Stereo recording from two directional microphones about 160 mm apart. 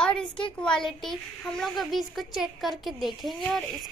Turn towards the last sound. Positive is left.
turn(degrees=5)  # may be behind; listen again after turning